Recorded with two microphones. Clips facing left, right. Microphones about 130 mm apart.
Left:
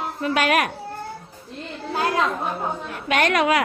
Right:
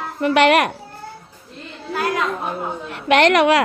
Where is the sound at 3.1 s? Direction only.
75° right (ahead or behind).